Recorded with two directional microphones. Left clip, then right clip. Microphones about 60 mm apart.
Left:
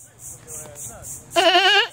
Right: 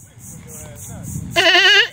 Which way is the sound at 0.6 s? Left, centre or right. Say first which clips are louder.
Right 1 dB; centre.